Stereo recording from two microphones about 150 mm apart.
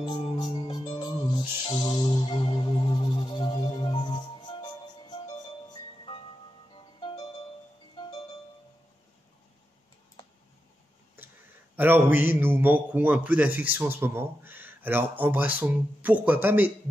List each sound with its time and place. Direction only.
0.1 s music: 25° left (ahead or behind)
11.7 s a man's voice: 15° right (ahead or behind)